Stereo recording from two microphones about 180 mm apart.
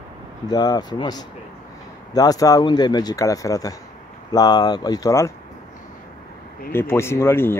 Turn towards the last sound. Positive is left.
turn(degrees=15)  # may be behind; listen again after turning